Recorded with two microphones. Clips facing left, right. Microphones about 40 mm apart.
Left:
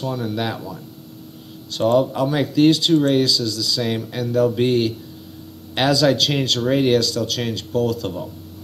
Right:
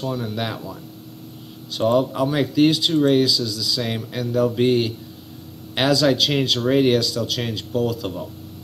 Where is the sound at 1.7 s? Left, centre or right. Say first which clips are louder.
Left 2 dB; centre.